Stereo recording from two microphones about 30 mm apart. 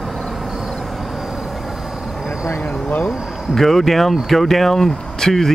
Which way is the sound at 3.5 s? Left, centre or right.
Centre.